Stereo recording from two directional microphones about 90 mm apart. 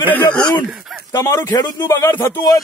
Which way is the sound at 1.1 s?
35° left (ahead or behind).